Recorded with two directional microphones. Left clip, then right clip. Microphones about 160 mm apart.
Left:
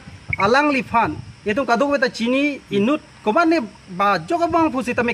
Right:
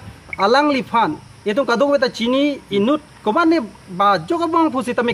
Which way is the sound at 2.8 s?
5° right (ahead or behind).